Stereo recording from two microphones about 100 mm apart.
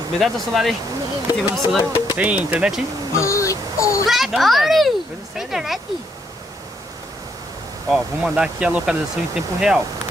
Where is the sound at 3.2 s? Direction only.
30° left (ahead or behind).